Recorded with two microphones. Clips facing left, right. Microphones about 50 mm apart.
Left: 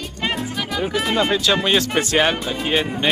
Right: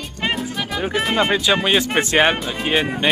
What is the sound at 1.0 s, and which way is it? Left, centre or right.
Speech, centre.